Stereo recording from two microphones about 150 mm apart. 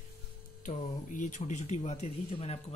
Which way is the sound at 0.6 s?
60° left (ahead or behind).